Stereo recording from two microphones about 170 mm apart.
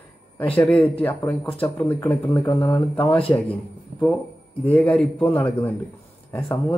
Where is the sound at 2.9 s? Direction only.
30° left (ahead or behind).